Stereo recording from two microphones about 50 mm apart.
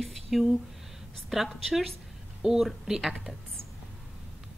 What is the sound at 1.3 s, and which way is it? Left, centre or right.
A woman's voice, centre.